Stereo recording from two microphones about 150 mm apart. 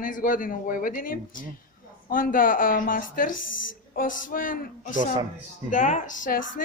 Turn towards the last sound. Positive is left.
turn(degrees=65)  # may be behind; listen again after turning